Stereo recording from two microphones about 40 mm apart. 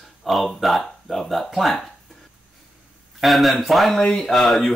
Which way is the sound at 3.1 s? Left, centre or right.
Centre.